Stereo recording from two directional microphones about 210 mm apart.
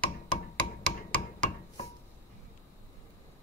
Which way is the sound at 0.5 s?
5° left (ahead or behind).